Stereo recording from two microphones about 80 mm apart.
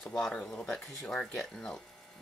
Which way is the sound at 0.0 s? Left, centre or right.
Centre.